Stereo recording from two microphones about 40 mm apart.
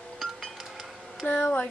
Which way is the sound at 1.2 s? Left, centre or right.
Left.